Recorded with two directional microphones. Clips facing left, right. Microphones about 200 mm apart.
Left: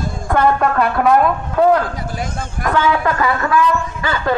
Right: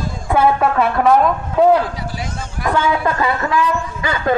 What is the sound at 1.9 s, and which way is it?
Speech, 50° left (ahead or behind).